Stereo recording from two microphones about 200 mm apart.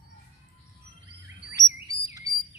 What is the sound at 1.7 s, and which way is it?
Bird, 15° right (ahead or behind).